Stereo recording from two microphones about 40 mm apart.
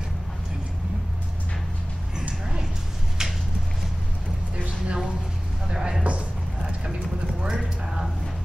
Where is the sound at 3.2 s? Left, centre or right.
Centre.